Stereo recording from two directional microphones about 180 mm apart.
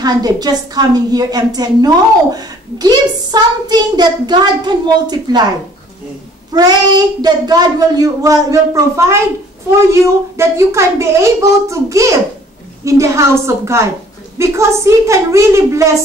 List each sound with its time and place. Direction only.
0.0 s a woman's voice: 20° right (ahead or behind)
6.5 s a woman's voice: 20° right (ahead or behind)
10.3 s a child's voice: 15° right (ahead or behind)